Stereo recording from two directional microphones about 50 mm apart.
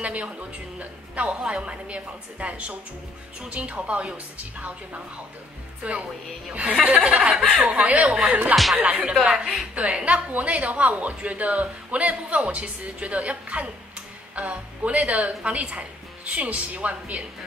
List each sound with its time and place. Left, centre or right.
0.0 s a woman's voice: right
7.6 s a woman's voice: right
9.1 s a woman's voice: centre
9.8 s a woman's voice: right